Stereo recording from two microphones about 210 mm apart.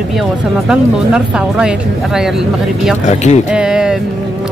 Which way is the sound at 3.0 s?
30° left (ahead or behind).